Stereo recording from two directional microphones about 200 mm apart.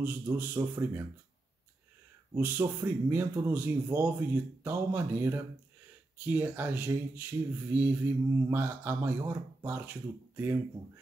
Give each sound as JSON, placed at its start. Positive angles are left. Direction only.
{"t": 0.0, "sound": "speech", "side_deg": -10}
{"t": 2.3, "sound": "speech", "side_deg": -10}